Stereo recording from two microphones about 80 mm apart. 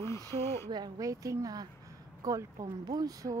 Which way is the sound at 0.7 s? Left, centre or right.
Right.